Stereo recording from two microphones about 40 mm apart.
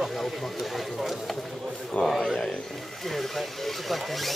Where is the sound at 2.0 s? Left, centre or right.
Left.